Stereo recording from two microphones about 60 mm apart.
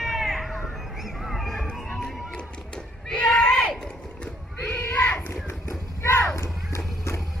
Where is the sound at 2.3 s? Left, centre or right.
Centre.